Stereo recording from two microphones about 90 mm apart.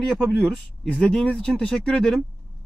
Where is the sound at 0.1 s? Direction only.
5° left (ahead or behind).